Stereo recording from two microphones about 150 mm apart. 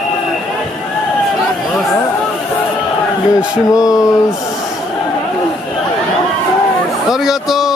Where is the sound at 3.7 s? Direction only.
20° left (ahead or behind).